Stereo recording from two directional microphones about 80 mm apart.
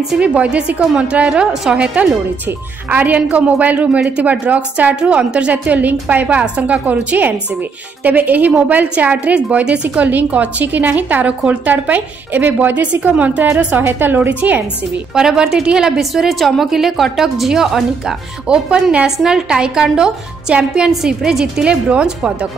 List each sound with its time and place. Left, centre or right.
0.2 s a woman's voice: centre
2.9 s a woman's voice: right
15.1 s a woman's voice: centre